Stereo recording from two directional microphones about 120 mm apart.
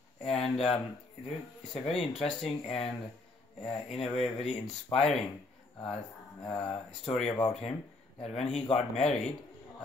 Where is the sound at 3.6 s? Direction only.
Centre (ahead or behind).